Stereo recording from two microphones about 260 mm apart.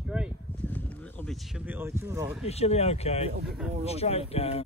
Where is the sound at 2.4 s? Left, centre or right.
Left.